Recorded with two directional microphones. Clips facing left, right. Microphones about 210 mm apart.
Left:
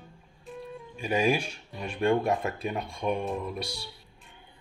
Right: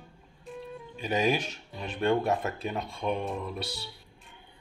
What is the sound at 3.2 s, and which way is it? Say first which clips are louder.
Speech: left 2 dB; centre (ahead or behind).